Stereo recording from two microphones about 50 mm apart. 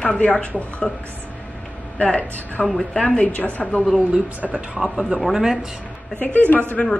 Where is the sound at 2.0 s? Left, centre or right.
Left.